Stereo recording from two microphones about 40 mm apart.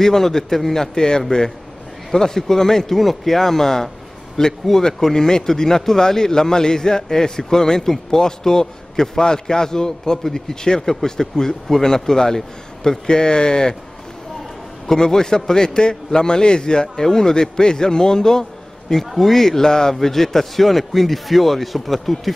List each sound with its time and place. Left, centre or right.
0.0 s speech: centre
14.9 s a man's voice: centre